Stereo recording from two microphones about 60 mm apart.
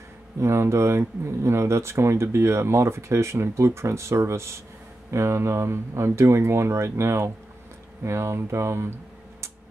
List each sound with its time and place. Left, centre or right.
0.4 s speech: right